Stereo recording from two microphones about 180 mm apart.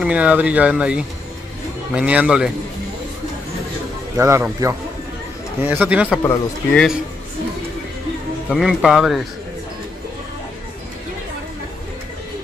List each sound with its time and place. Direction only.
0.0 s speech: 10° right (ahead or behind)
4.2 s speech: 15° right (ahead or behind)
6.2 s speech: 5° left (ahead or behind)
8.5 s speech: centre (ahead or behind)